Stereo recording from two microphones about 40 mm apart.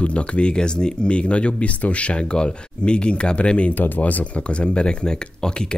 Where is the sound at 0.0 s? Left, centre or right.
Left.